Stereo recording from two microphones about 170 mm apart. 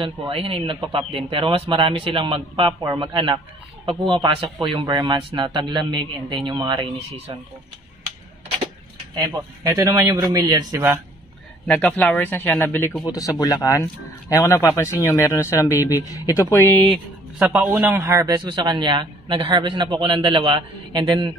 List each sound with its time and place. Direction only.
0.0 s a man's voice: 30° right (ahead or behind)
9.1 s a man's voice: 20° right (ahead or behind)
11.6 s speech: 5° left (ahead or behind)
17.4 s a man's voice: centre (ahead or behind)
17.6 s a man's voice: 10° right (ahead or behind)